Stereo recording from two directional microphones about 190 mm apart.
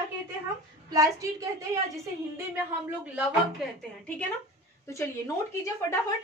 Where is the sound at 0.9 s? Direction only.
15° right (ahead or behind).